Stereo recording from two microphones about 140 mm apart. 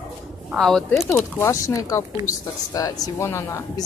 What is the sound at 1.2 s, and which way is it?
A woman's voice, 20° left (ahead or behind).